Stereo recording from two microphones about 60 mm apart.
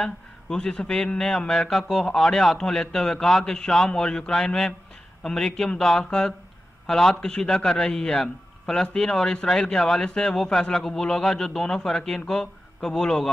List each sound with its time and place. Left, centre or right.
0.0 s a man's voice: centre